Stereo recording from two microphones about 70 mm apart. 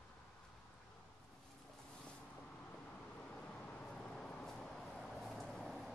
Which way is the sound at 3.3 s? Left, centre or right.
Centre.